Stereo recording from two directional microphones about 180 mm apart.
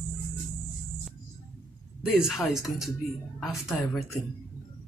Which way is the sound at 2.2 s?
Centre (ahead or behind).